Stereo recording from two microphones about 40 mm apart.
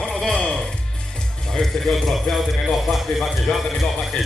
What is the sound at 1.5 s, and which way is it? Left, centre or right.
A man's voice, centre.